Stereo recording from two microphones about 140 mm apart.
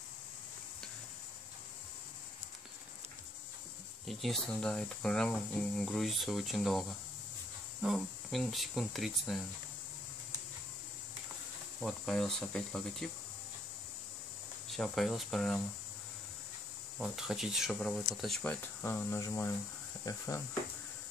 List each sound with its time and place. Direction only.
4.0 s speech: centre (ahead or behind)
11.8 s speech: 5° left (ahead or behind)
14.8 s speech: centre (ahead or behind)
17.0 s speech: 5° right (ahead or behind); by 20.4 s 20° left (ahead or behind)